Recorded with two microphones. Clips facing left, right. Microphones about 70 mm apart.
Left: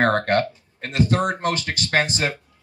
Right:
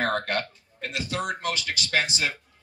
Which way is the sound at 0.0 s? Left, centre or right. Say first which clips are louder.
Left 7 dB; left.